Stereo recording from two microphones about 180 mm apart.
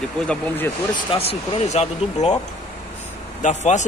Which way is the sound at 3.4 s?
40° left (ahead or behind).